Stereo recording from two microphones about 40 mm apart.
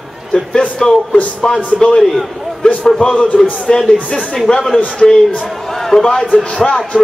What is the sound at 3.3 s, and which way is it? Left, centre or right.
Speech, centre.